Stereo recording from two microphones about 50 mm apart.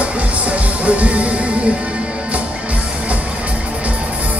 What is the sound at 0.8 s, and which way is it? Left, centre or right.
Music, right.